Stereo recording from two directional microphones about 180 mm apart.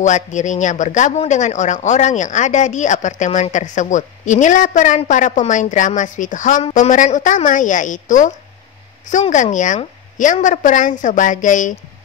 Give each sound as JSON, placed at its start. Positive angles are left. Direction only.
{"t": 0.0, "sound": "speech", "side_deg": 40}